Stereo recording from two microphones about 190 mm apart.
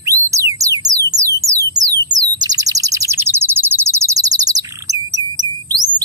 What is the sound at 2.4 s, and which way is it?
Bird, 20° right (ahead or behind).